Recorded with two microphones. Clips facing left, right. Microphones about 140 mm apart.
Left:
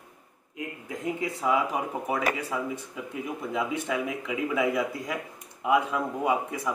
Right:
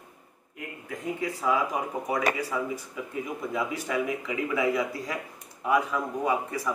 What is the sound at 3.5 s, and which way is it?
Speech, 20° left (ahead or behind).